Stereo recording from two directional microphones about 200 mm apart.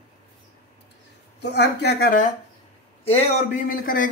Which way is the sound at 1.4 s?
55° left (ahead or behind).